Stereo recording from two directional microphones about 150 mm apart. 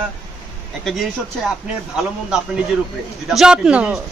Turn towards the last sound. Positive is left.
turn(degrees=-5)  # may be behind; listen again after turning